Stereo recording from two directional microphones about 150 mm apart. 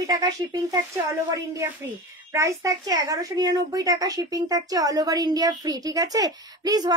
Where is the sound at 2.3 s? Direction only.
20° right (ahead or behind).